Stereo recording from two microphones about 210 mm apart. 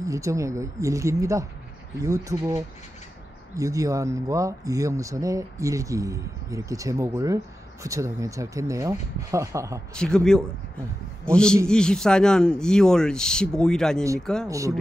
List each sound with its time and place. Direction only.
0.0 s speech: 15° right (ahead or behind)
9.9 s a man's voice: 5° left (ahead or behind)